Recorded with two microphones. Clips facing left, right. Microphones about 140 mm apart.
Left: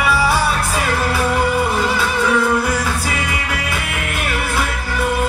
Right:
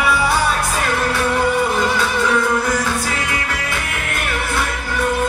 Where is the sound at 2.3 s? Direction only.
10° left (ahead or behind).